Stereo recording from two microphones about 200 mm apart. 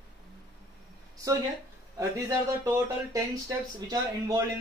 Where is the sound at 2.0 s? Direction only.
15° right (ahead or behind).